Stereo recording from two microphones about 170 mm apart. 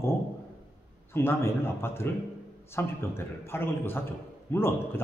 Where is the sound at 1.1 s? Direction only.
15° left (ahead or behind).